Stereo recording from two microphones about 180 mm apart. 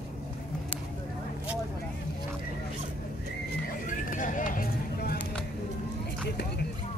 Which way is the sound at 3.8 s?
45° left (ahead or behind).